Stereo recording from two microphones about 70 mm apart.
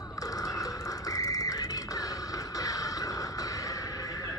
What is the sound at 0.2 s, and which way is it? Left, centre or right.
Music, left.